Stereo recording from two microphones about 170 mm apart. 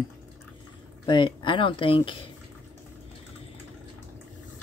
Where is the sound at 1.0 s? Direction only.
30° left (ahead or behind).